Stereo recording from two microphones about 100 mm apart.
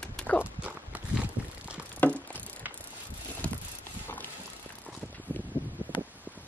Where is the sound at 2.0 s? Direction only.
15° left (ahead or behind).